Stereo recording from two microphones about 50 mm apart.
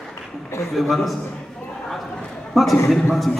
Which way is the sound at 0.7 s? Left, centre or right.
Centre.